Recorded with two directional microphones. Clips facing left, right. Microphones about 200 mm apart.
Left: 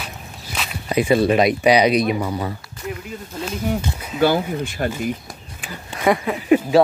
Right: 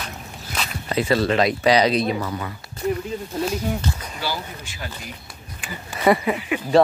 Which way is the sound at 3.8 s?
10° left (ahead or behind).